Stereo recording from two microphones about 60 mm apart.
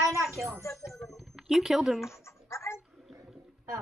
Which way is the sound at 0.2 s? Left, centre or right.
Centre.